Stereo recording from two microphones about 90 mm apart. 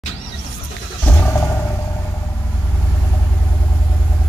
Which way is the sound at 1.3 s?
25° left (ahead or behind).